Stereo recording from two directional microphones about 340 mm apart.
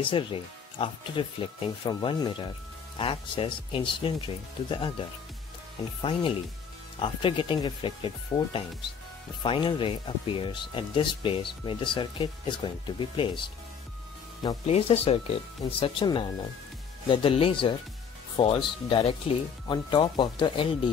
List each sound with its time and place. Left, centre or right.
0.0 s speech: centre
7.0 s speech: centre